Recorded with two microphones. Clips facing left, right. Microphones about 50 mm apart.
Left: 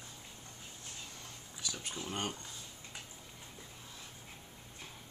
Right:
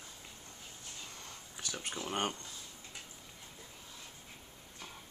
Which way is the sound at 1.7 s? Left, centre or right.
Right.